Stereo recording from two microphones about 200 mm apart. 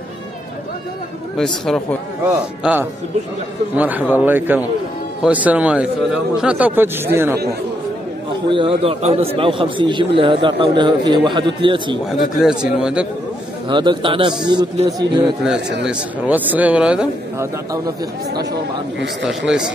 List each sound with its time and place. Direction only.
1.3 s a man's voice: 5° left (ahead or behind)
2.2 s speech: 10° right (ahead or behind)
8.5 s a man's voice: 25° right (ahead or behind)
12.4 s a man's voice: 5° right (ahead or behind)
13.7 s a man's voice: 25° right (ahead or behind)
15.8 s speech: 5° right (ahead or behind)
19.2 s a man's voice: 5° right (ahead or behind)